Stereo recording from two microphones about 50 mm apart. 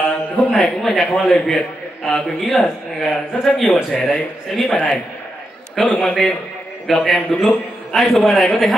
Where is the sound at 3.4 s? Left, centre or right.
Centre.